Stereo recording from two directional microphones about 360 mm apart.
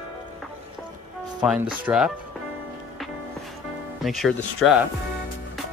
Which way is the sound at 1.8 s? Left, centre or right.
Centre.